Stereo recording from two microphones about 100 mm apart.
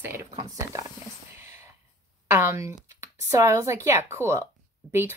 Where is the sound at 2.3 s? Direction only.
25° right (ahead or behind).